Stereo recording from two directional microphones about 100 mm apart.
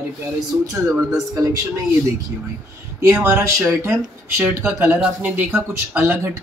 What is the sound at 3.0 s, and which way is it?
Speech, 30° right (ahead or behind).